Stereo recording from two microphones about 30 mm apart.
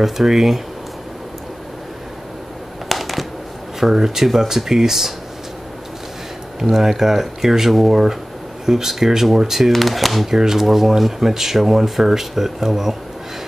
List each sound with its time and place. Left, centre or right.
0.0 s speech: centre
2.9 s a sound: centre
3.9 s speech: centre
6.6 s speech: centre
10.2 s speech: centre